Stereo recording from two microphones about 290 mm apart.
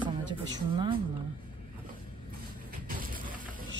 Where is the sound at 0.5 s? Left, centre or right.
Centre.